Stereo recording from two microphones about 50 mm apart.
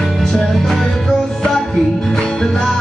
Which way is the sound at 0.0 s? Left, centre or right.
Centre.